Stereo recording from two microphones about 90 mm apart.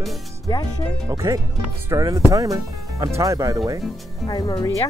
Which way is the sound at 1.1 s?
40° right (ahead or behind).